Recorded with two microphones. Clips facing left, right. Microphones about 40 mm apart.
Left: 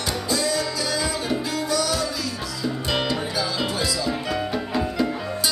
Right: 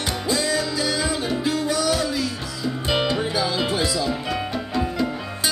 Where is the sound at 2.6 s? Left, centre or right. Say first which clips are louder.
Right 2 dB; centre.